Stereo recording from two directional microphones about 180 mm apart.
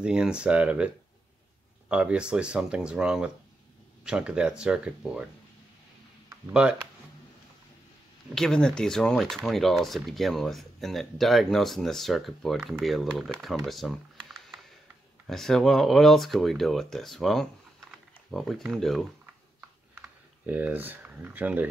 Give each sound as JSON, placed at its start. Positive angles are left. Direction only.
{"t": 0.0, "sound": "speech", "side_deg": -5}
{"t": 6.5, "sound": "speech", "side_deg": -5}
{"t": 8.4, "sound": "speech", "side_deg": 5}
{"t": 20.0, "sound": "speech", "side_deg": -10}